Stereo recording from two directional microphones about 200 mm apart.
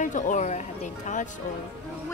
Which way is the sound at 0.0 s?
40° left (ahead or behind).